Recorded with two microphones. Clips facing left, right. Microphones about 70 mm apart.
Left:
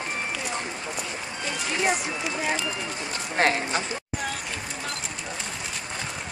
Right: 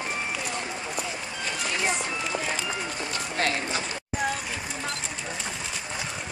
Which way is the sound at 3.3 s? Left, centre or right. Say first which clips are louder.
Left 5 dB; left.